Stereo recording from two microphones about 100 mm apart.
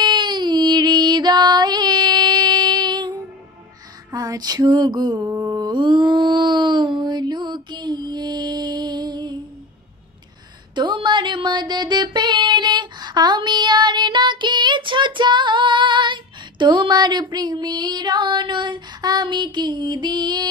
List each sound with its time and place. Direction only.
0.0 s female singing: 50° right (ahead or behind)
4.1 s a sound: 40° right (ahead or behind)
10.7 s music: 50° right (ahead or behind)